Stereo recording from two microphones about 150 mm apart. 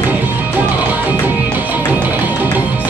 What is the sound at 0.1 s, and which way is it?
Music, 10° right (ahead or behind).